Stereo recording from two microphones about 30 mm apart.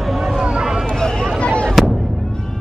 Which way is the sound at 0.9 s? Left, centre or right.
Centre.